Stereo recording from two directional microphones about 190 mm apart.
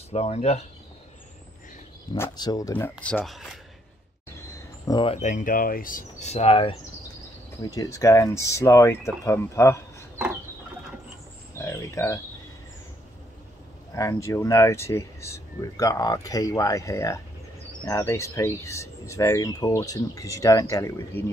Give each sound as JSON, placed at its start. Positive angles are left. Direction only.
{"t": 0.1, "sound": "speech", "side_deg": 35}
{"t": 2.1, "sound": "speech", "side_deg": 15}
{"t": 4.4, "sound": "speech", "side_deg": 15}
{"t": 7.6, "sound": "speech", "side_deg": 20}
{"t": 11.5, "sound": "a sound", "side_deg": 15}
{"t": 13.9, "sound": "speech", "side_deg": 15}